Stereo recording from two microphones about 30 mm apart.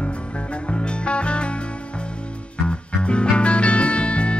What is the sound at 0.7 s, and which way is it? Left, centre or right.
Music, left.